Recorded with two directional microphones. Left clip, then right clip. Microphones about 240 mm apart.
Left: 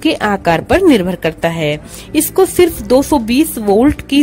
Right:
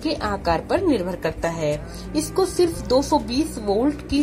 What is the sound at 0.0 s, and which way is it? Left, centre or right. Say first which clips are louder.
A woman's voice: left 10 dB; left.